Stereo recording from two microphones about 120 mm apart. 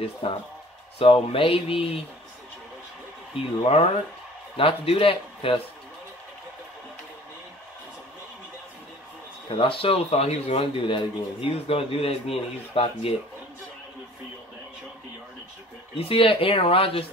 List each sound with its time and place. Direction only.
0.0 s speech: 50° left (ahead or behind)
3.3 s speech: 55° left (ahead or behind)
9.6 s speech: 50° left (ahead or behind)
16.0 s speech: 50° left (ahead or behind)